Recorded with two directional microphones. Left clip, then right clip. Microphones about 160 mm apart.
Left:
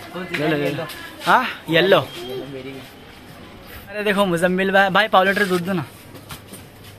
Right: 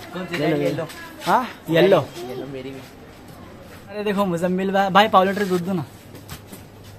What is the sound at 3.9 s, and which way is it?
Speech, 5° left (ahead or behind).